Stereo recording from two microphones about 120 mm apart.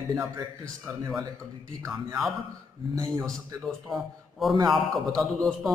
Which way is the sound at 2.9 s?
30° right (ahead or behind).